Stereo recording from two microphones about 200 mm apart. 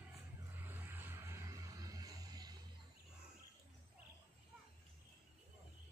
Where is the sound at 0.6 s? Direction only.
10° right (ahead or behind).